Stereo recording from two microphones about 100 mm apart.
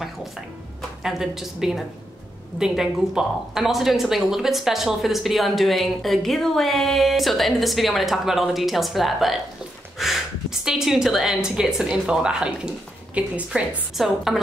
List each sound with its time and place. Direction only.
1.0 s speech: 5° right (ahead or behind)